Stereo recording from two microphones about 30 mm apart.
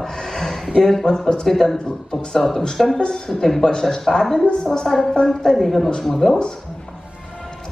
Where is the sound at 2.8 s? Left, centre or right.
Centre.